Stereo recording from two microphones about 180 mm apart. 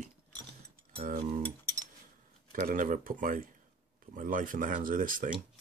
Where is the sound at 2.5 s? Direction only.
50° right (ahead or behind).